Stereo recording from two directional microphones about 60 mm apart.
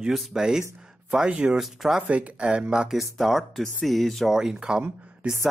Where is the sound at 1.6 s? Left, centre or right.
Centre.